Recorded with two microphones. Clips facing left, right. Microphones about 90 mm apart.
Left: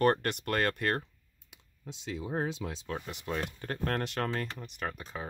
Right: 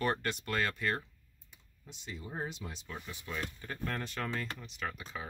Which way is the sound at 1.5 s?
90° left.